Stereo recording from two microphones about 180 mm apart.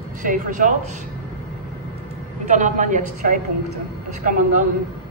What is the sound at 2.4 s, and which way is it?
Speech, 45° right (ahead or behind).